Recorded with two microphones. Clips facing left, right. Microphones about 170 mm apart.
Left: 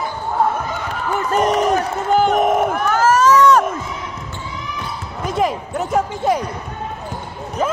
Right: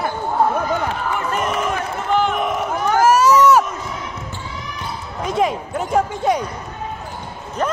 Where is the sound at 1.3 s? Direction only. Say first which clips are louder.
Left 8 dB; 35° left (ahead or behind).